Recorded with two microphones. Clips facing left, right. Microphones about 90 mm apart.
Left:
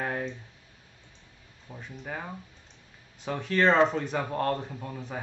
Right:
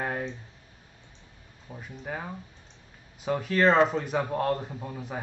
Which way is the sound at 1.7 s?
5° right (ahead or behind).